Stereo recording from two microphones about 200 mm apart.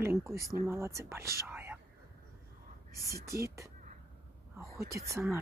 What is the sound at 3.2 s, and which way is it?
Speech, 15° right (ahead or behind).